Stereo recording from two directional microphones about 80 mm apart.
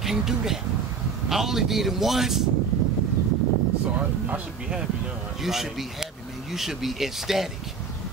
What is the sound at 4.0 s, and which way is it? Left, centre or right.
Speech, centre.